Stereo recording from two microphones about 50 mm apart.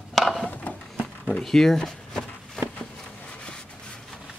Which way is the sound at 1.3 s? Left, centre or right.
Centre.